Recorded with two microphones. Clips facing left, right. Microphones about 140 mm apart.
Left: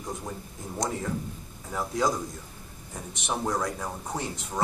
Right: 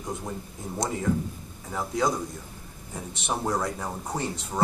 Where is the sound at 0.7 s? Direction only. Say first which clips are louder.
Right 3 dB; centre (ahead or behind).